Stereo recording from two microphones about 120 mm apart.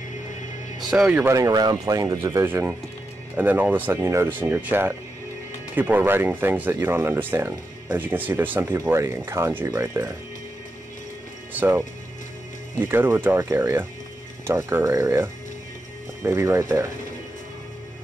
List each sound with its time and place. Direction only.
0.7 s speech: 5° right (ahead or behind)
1.3 s speech: 30° right (ahead or behind)
12.7 s speech: 20° right (ahead or behind)